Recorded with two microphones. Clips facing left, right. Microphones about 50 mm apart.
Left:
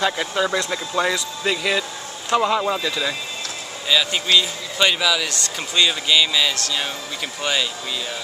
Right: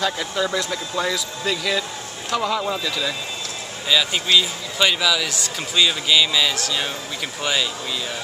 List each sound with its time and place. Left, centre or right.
0.0 s speech: centre
3.9 s a man's voice: centre